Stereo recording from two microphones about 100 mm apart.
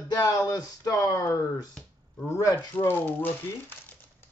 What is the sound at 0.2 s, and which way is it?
Speech, 30° left (ahead or behind).